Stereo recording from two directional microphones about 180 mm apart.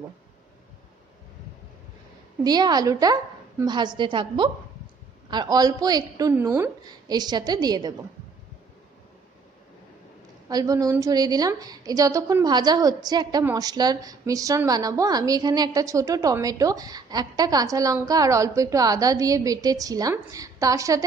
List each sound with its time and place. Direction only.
2.4 s a woman's voice: 20° right (ahead or behind)
10.5 s a woman's voice: 20° right (ahead or behind)